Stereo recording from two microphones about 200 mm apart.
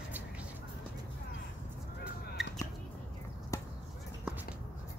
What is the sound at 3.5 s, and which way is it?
Basketball bounce, 15° left (ahead or behind).